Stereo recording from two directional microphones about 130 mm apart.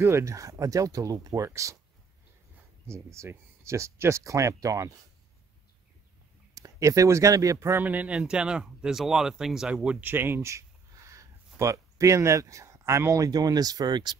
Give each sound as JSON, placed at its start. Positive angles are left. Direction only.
{"t": 0.0, "sound": "speech", "side_deg": -20}
{"t": 2.9, "sound": "speech", "side_deg": -20}
{"t": 6.5, "sound": "speech", "side_deg": -25}